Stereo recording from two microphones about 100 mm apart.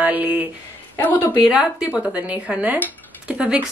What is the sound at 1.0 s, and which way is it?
Speech, 15° left (ahead or behind).